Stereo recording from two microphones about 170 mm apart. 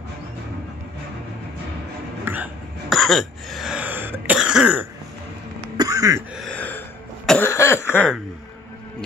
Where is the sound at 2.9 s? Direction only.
Centre (ahead or behind).